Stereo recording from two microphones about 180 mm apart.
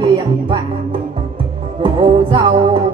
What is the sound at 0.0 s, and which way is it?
Music, 25° right (ahead or behind).